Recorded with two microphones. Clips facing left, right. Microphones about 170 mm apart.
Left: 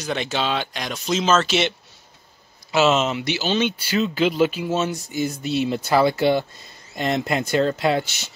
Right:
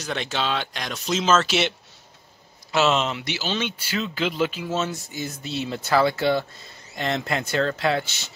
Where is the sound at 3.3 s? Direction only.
20° left (ahead or behind).